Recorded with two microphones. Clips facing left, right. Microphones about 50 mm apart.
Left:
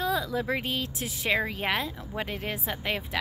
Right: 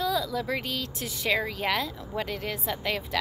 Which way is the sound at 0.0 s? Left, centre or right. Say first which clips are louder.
Even; left.